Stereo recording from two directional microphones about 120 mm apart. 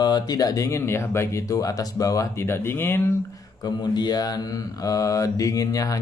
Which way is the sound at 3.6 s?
35° left (ahead or behind).